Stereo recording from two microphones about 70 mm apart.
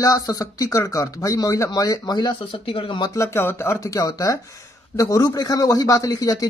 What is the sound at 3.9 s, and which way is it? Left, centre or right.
A man's voice, left.